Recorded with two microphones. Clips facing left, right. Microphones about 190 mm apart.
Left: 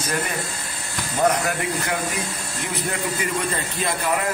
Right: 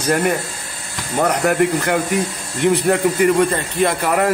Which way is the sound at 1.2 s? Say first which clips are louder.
Right 5 dB; 60° right (ahead or behind).